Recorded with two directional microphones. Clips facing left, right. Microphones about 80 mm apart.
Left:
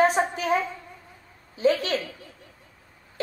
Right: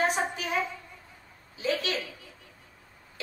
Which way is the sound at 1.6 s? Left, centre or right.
Left.